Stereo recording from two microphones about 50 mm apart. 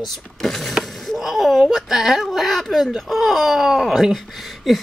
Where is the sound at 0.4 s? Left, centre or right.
Centre.